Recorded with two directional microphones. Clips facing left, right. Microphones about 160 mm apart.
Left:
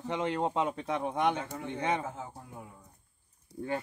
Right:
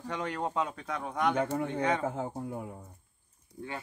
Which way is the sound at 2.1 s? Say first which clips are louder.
Right 8 dB; 60° right (ahead or behind).